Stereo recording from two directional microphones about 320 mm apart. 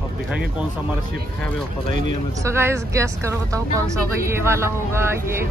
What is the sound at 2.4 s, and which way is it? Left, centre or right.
Speech, centre.